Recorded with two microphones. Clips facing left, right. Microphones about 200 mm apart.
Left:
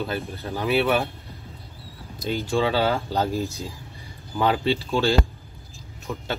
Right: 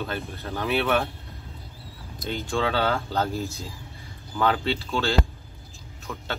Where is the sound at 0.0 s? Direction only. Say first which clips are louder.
Left 3 dB; 5° left (ahead or behind).